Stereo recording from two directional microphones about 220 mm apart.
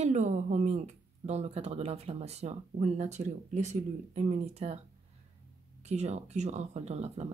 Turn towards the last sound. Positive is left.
turn(degrees=-30)  # may be behind; listen again after turning